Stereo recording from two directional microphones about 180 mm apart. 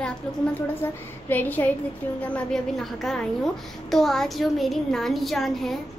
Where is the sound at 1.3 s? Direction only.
10° left (ahead or behind).